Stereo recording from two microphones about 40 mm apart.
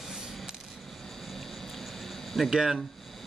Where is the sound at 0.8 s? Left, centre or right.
Centre.